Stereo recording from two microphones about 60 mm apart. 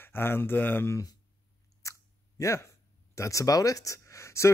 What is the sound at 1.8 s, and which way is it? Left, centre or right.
Chewing, left.